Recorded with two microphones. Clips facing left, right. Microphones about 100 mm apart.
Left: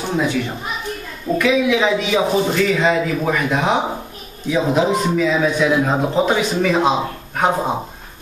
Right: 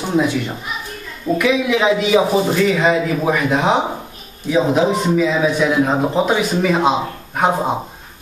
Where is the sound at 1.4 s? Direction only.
5° right (ahead or behind).